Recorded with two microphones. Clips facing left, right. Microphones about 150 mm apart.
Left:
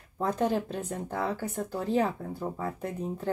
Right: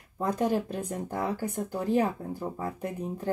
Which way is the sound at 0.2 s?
10° right (ahead or behind).